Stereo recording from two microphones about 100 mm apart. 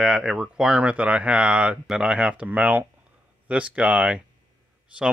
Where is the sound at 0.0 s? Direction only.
5° right (ahead or behind).